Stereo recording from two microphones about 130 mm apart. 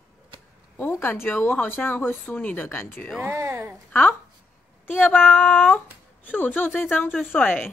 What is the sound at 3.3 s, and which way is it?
Speech, 20° right (ahead or behind).